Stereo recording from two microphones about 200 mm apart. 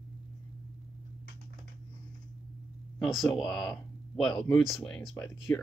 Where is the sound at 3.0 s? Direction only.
Centre (ahead or behind).